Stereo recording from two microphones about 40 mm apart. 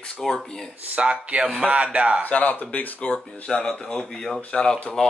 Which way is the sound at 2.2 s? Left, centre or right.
Left.